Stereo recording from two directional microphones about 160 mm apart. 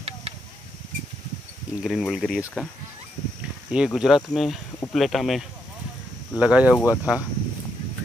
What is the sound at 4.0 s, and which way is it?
Speech, centre (ahead or behind).